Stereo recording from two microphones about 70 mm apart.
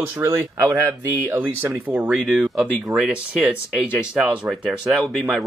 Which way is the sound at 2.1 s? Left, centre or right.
Centre.